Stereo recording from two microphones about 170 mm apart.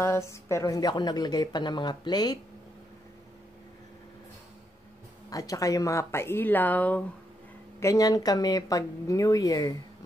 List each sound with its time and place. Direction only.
0.0 s a woman's voice: 15° left (ahead or behind)
5.3 s speech: 20° left (ahead or behind)
7.8 s a woman's voice: 20° left (ahead or behind)